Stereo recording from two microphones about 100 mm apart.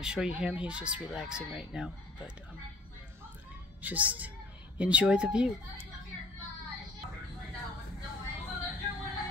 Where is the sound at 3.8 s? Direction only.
15° right (ahead or behind).